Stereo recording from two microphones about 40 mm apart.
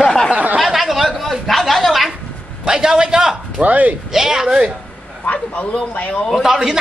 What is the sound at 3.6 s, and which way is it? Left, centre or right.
Speech, right.